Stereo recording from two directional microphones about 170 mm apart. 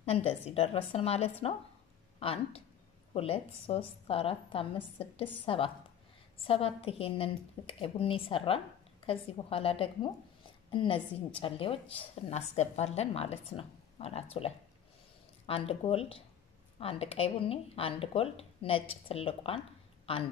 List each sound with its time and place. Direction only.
0.0 s a woman's voice: 35° left (ahead or behind)
15.4 s a woman's voice: 35° left (ahead or behind)